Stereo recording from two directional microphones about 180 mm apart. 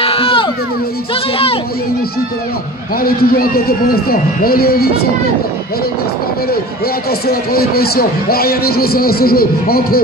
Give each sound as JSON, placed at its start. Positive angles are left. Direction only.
{"t": 0.0, "sound": "a sound", "side_deg": 30}
{"t": 3.0, "sound": "a man's voice", "side_deg": 55}
{"t": 7.1, "sound": "a man's voice", "side_deg": 60}